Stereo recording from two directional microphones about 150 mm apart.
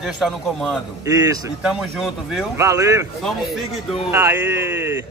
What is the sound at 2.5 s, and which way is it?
Speech, 20° right (ahead or behind).